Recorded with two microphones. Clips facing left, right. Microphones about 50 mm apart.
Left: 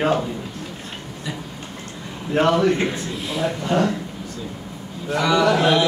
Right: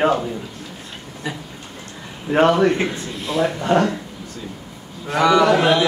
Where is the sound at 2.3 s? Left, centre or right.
Right.